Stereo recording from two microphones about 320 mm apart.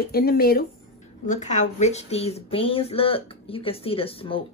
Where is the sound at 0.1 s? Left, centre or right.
Left.